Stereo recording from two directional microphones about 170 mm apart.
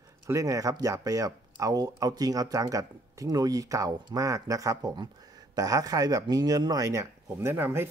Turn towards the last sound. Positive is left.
turn(degrees=-10)  # may be behind; listen again after turning